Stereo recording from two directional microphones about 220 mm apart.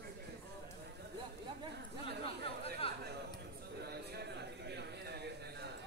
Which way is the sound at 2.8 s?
25° left (ahead or behind).